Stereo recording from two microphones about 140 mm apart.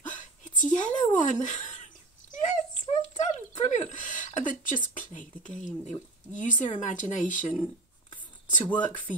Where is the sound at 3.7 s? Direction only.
60° left (ahead or behind).